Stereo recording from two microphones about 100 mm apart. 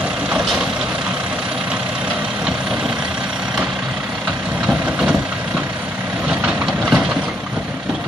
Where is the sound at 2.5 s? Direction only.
5° right (ahead or behind).